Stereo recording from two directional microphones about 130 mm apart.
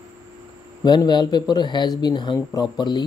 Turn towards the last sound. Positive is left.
turn(degrees=35)  # may be behind; listen again after turning